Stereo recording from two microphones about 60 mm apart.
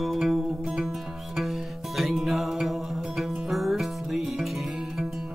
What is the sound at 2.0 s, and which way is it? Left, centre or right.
Music, centre.